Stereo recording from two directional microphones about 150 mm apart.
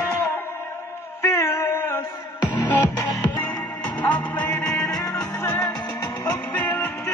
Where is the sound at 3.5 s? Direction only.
10° left (ahead or behind).